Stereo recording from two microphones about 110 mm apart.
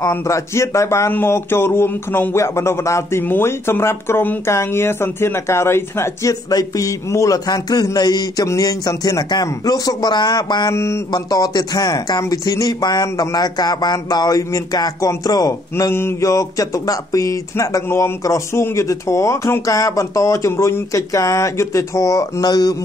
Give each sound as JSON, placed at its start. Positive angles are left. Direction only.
{"t": 0.0, "sound": "speech", "side_deg": 25}
{"t": 10.7, "sound": "speech", "side_deg": 25}
{"t": 15.7, "sound": "speech", "side_deg": 20}